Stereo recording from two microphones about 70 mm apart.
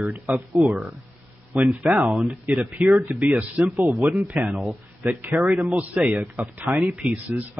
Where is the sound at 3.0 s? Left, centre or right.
Right.